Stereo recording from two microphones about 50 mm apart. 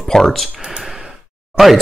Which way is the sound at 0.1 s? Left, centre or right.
Centre.